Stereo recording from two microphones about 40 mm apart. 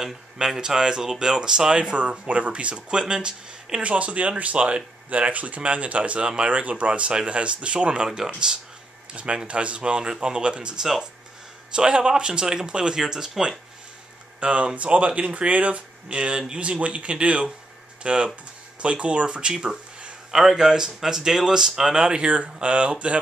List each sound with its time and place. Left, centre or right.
0.0 s speech: centre
3.8 s speech: right; by 13.3 s centre
14.4 s speech: right
20.2 s speech: centre; by 23.1 s right